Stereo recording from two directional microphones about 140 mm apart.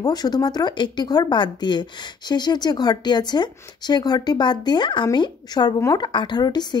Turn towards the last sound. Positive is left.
turn(degrees=30)  # may be behind; listen again after turning